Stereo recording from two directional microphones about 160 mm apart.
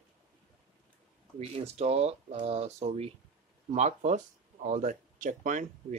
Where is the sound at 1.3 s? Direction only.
40° right (ahead or behind).